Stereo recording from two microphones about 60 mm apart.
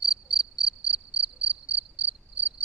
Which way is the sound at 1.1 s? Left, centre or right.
Right.